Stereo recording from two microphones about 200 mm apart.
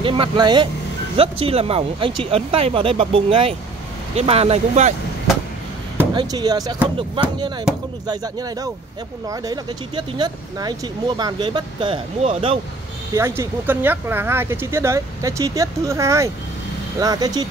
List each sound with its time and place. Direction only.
0.0 s speech: 25° right (ahead or behind)
6.1 s speech: 20° right (ahead or behind)
13.1 s speech: 15° right (ahead or behind)